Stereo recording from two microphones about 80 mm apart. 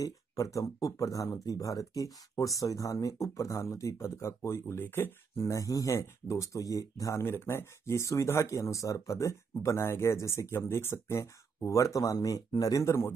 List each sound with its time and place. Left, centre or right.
0.0 s speech: left
5.4 s speech: left
7.2 s speech: left